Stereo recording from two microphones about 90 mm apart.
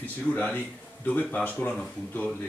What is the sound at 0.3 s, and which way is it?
Speech, 15° left (ahead or behind).